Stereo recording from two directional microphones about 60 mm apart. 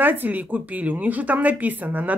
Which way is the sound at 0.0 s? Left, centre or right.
Right.